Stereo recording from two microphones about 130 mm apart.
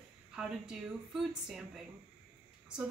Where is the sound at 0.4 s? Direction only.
5° right (ahead or behind).